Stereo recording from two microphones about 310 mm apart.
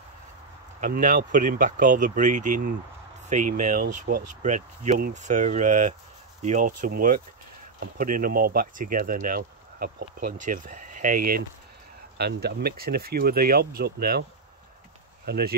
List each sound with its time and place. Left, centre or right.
0.7 s speech: right
15.2 s speech: right